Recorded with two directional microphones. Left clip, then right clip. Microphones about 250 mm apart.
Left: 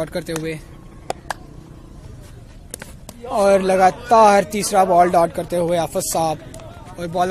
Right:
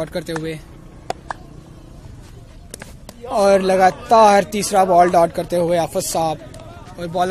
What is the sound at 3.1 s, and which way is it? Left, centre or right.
A man's voice, centre.